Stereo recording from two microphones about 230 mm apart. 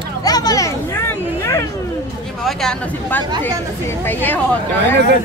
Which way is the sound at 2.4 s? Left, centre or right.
Centre.